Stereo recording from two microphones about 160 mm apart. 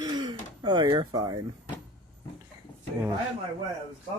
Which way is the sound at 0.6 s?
30° right (ahead or behind).